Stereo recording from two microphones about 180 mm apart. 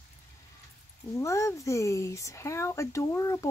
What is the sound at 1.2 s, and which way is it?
Speech, 15° left (ahead or behind).